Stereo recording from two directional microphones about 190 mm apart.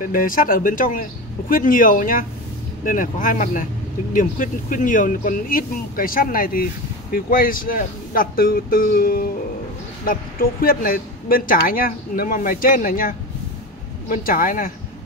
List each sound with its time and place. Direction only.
0.0 s speech: 45° left (ahead or behind)